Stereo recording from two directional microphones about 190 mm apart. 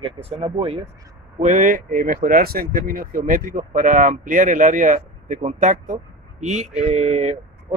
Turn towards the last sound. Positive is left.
turn(degrees=-35)  # may be behind; listen again after turning